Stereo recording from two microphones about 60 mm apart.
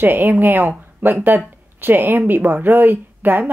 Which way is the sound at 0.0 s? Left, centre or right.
Right.